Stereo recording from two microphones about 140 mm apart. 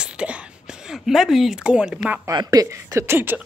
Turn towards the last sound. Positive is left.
turn(degrees=-15)  # may be behind; listen again after turning